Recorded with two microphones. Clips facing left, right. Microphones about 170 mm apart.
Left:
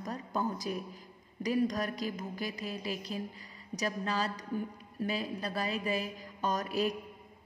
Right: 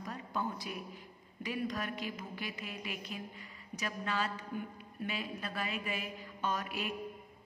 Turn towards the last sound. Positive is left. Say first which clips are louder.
# left 5 dB
turn(degrees=35)  # may be behind; listen again after turning